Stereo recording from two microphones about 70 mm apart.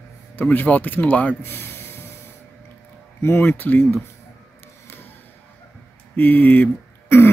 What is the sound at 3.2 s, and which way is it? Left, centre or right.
Speech, left.